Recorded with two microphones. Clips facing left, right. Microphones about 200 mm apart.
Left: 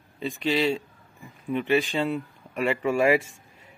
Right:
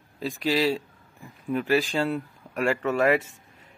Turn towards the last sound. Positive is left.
turn(degrees=10)  # may be behind; listen again after turning